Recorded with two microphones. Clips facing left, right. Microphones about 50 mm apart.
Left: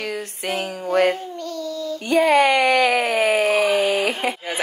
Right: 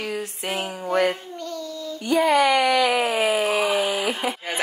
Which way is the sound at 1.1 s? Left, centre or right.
Centre.